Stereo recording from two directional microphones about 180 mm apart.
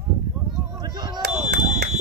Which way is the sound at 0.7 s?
20° right (ahead or behind).